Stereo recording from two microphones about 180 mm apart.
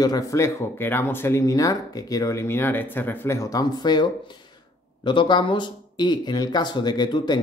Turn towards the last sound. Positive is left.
turn(degrees=25)  # may be behind; listen again after turning